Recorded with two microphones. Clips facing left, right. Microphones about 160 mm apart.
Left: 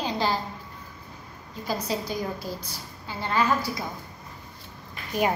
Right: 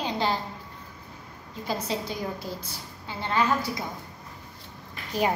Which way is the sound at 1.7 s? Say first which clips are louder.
Left 1 dB; 25° right (ahead or behind).